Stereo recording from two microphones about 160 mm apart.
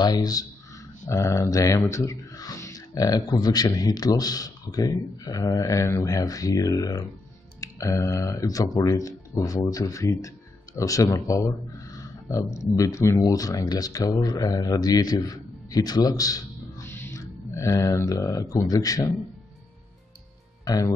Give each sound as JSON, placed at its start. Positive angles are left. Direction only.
{"t": 0.0, "sound": "speech", "side_deg": 25}
{"t": 20.6, "sound": "speech", "side_deg": 20}